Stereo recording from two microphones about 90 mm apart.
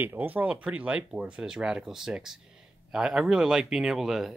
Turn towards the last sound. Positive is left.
turn(degrees=-5)  # may be behind; listen again after turning